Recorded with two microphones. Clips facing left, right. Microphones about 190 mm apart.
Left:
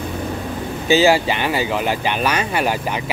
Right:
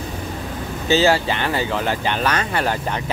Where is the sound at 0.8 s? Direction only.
10° left (ahead or behind).